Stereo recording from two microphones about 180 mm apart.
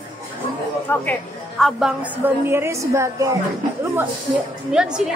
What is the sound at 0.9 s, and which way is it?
Speech, 10° left (ahead or behind).